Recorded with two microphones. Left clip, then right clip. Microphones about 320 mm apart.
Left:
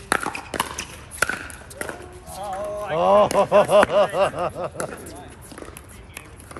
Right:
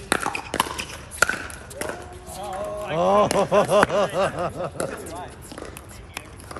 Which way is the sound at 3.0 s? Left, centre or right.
Left.